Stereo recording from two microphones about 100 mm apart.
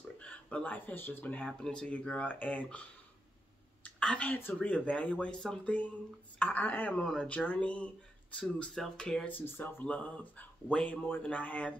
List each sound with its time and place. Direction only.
0.2 s speech: 15° left (ahead or behind)
9.3 s speech: 20° left (ahead or behind)